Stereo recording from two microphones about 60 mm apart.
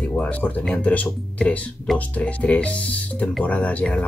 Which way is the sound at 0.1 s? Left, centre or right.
Left.